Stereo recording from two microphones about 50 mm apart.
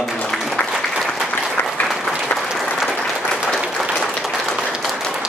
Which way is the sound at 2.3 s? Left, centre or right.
Left.